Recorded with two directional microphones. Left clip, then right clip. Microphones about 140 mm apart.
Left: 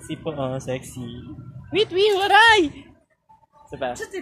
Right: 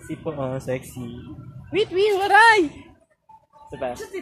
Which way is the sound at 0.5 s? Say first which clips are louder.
Right 1 dB; 20° right (ahead or behind).